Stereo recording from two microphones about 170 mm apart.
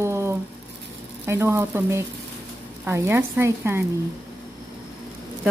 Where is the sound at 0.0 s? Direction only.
15° right (ahead or behind).